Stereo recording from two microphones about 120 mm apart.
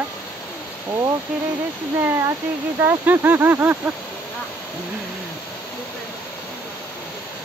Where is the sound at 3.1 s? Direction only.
20° right (ahead or behind).